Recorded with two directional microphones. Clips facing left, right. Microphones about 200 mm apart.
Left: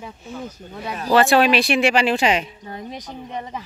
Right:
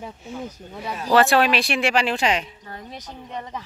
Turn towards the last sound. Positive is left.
turn(degrees=15)  # may be behind; listen again after turning